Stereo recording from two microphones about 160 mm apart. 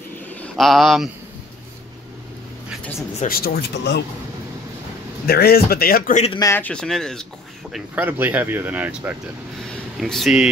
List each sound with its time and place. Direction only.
0.3 s speech: 5° left (ahead or behind)
3.3 s speech: 70° left (ahead or behind)
5.2 s speech: 75° left (ahead or behind)
6.5 s speech: 10° left (ahead or behind)
7.7 s speech: 10° right (ahead or behind)
9.7 s a sound: 5° left (ahead or behind)